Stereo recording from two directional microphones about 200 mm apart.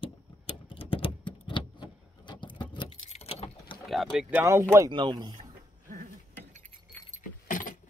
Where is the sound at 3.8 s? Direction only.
Centre (ahead or behind); by 5.4 s 20° right (ahead or behind).